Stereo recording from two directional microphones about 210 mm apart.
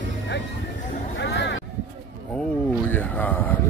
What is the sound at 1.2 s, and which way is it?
Vehicle, 55° left (ahead or behind).